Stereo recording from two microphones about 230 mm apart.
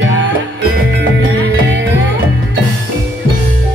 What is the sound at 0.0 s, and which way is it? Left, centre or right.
Music, right.